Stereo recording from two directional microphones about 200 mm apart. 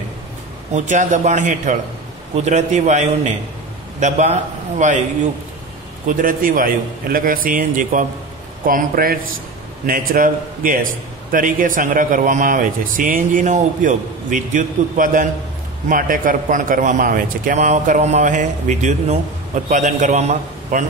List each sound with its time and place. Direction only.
0.7 s a man's voice: 40° right (ahead or behind)
6.0 s a man's voice: 45° right (ahead or behind)